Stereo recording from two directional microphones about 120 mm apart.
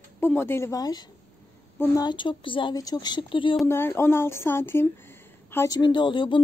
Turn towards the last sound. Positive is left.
turn(degrees=45)  # may be behind; listen again after turning